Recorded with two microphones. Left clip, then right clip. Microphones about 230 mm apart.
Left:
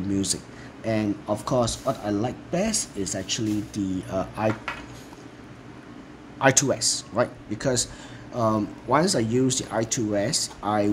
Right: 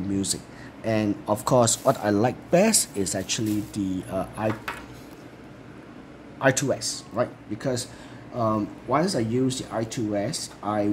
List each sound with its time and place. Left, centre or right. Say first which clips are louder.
0.1 s speech: left 2 dB; centre
0.8 s speech: right 1 dB; centre
6.4 s speech: left 2 dB; centre